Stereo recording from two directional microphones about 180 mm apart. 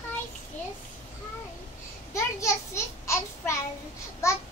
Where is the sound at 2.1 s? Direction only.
15° left (ahead or behind).